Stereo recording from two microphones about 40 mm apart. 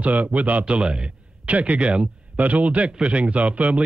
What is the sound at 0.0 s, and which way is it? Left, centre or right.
Speech, right.